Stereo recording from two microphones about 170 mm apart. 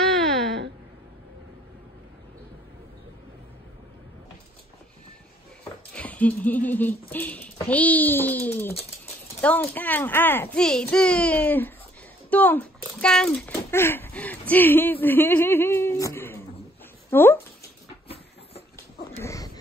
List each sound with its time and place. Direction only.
0.0 s a sound: centre (ahead or behind)
5.9 s a child's voice: 10° left (ahead or behind)
18.0 s train: 35° left (ahead or behind)
19.1 s dog: 20° left (ahead or behind)